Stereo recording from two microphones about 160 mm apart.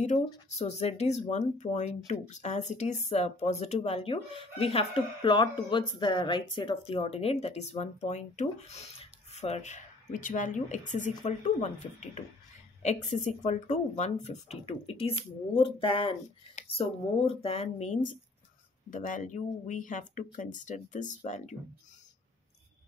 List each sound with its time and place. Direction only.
0.5 s speech: 45° left (ahead or behind)